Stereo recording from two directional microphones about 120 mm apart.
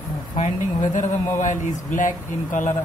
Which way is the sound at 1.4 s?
90° left.